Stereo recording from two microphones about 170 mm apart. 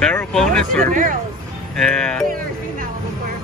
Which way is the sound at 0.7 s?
55° right (ahead or behind).